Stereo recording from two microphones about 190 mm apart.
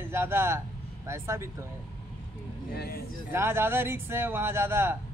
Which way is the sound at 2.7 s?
55° left (ahead or behind).